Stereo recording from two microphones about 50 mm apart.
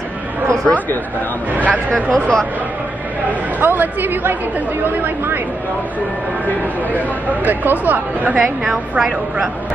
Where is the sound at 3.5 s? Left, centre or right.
Right.